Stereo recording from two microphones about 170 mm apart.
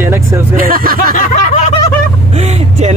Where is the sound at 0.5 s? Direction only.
55° right (ahead or behind).